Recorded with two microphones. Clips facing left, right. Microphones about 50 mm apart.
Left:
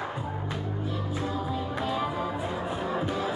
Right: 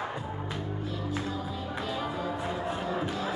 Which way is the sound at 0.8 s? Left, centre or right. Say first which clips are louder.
Left 2 dB; centre.